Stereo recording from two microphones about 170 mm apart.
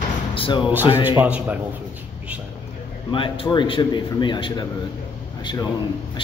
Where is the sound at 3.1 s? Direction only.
30° left (ahead or behind).